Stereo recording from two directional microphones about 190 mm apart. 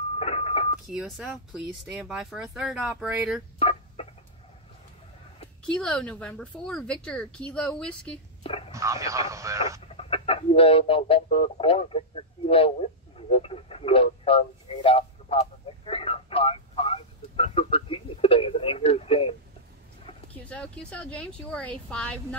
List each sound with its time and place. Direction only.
0.2 s a sound: 30° left (ahead or behind)
0.8 s speech: centre (ahead or behind)
3.5 s a sound: 30° left (ahead or behind)
5.7 s speech: 5° left (ahead or behind)
8.5 s whispering: 30° left (ahead or behind)
8.7 s speech: 15° right (ahead or behind)
9.9 s speech: 30° left (ahead or behind)
13.3 s radio: 30° left (ahead or behind)
20.4 s speech: 5° left (ahead or behind)